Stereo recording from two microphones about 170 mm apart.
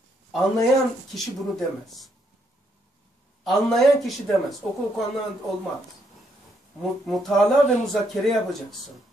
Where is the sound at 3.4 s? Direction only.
Centre (ahead or behind).